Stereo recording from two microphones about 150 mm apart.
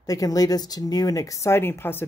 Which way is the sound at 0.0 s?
25° left (ahead or behind).